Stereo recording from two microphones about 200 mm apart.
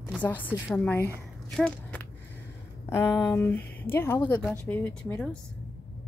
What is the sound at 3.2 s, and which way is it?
Speech, 10° left (ahead or behind).